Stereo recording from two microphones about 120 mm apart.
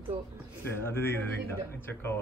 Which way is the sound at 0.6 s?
20° left (ahead or behind).